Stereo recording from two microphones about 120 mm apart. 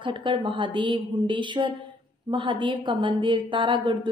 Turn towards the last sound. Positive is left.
turn(degrees=-40)  # may be behind; listen again after turning